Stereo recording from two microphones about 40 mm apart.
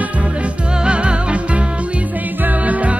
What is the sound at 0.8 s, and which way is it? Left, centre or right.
Music, right.